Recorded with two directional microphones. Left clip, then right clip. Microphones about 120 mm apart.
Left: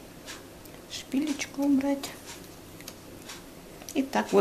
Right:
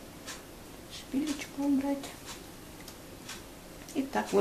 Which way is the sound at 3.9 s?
25° left (ahead or behind).